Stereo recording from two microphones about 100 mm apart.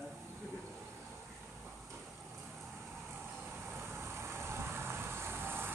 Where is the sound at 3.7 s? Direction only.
25° right (ahead or behind).